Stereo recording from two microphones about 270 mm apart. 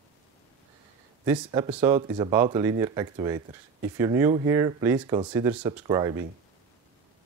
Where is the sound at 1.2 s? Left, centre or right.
Centre.